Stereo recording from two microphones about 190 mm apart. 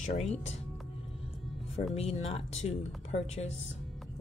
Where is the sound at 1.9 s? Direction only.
30° left (ahead or behind).